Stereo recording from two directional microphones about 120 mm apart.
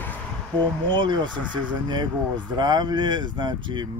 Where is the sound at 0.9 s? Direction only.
40° right (ahead or behind).